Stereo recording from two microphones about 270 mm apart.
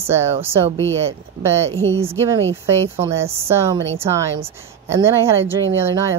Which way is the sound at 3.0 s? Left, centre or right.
Centre.